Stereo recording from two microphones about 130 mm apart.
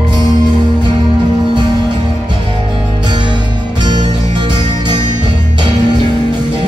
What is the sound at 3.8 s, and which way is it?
Music, 35° right (ahead or behind).